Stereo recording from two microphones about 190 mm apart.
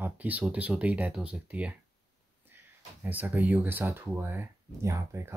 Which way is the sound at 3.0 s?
10° right (ahead or behind).